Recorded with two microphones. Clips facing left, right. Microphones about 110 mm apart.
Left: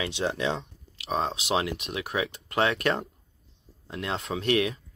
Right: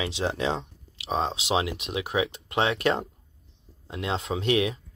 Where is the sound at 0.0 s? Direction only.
30° right (ahead or behind).